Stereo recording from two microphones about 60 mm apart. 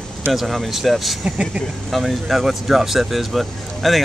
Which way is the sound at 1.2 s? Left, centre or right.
Centre.